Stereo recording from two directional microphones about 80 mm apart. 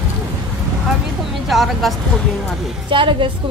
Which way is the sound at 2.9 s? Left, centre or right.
Right.